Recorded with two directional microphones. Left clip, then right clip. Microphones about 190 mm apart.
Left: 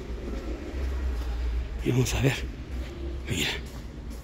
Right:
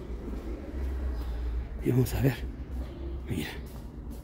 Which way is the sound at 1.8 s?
25° right (ahead or behind).